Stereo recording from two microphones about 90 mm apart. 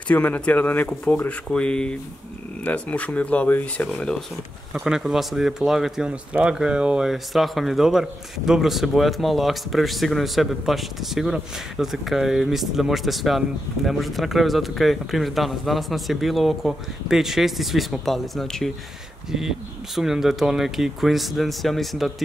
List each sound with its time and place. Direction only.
0.1 s speech: 15° left (ahead or behind)
4.7 s speech: 5° right (ahead or behind)
20.0 s speech: 5° right (ahead or behind)